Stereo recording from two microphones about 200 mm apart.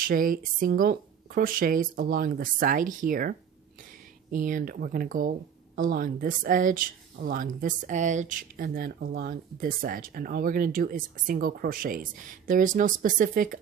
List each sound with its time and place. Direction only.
0.0 s speech: 45° right (ahead or behind)